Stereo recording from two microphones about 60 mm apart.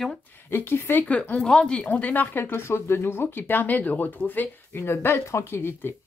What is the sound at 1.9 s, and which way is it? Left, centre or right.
Speech, left.